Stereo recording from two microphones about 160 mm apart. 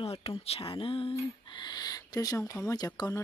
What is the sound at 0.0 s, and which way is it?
A child's voice, 35° left (ahead or behind).